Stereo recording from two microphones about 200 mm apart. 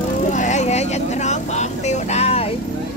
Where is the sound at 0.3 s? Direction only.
35° left (ahead or behind).